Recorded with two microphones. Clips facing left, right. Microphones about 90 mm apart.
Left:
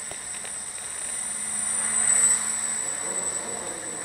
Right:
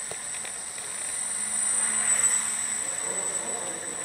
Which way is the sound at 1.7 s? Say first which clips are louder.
Left 1 dB; centre (ahead or behind).